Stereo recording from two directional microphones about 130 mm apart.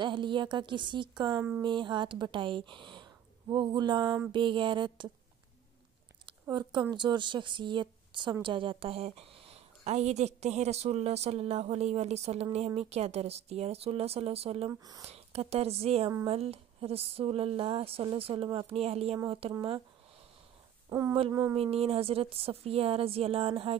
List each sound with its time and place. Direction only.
0.0 s speech: 40° right (ahead or behind)
6.5 s a woman's voice: 35° right (ahead or behind)
14.7 s speech: 25° right (ahead or behind)
15.0 s a woman's voice: 50° right (ahead or behind)
20.9 s speech: 25° right (ahead or behind)
21.5 s a woman's voice: 50° right (ahead or behind)